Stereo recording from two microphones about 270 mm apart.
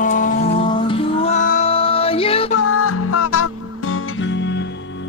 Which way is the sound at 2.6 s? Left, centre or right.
Left.